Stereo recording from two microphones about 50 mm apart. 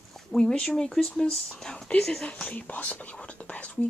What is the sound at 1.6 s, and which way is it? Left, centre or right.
Whispering, centre.